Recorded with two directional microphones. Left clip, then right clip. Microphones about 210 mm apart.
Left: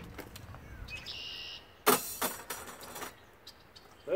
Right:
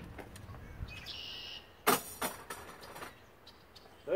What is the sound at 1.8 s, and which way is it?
Music, 45° left (ahead or behind).